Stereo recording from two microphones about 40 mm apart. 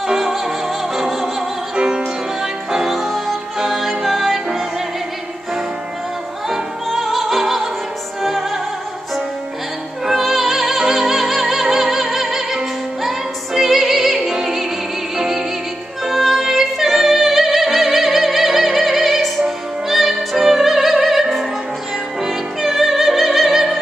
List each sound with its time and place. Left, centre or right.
0.0 s music: centre
1.8 s music: right
2.4 s music: centre
6.5 s opera: centre
8.2 s music: centre
10.0 s music: centre